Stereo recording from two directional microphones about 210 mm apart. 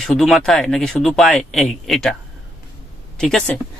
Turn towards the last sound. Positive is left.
turn(degrees=5)  # may be behind; listen again after turning